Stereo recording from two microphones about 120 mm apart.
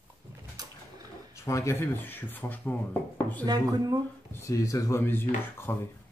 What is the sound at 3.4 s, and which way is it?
Speech, 30° right (ahead or behind).